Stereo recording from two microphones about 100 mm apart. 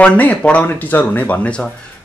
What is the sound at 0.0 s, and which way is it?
Speech, 15° left (ahead or behind).